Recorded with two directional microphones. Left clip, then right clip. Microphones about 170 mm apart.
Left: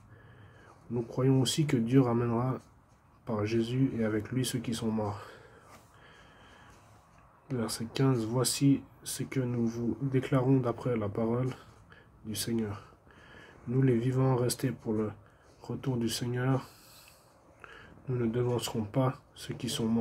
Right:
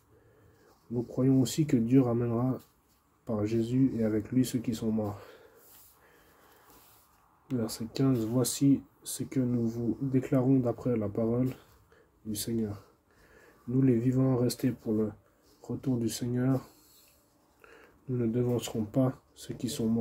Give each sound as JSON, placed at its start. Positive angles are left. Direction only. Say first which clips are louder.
{"t": 1.2, "sound": "speech", "louder": "right 1 dB", "side_deg": -20}
{"t": 7.5, "sound": "speech", "louder": "even", "side_deg": -25}
{"t": 13.7, "sound": "speech", "louder": "right 2 dB", "side_deg": -20}
{"t": 18.1, "sound": "speech", "louder": "right 1 dB", "side_deg": -20}
{"t": 18.9, "sound": "speech", "louder": "right 1 dB", "side_deg": -30}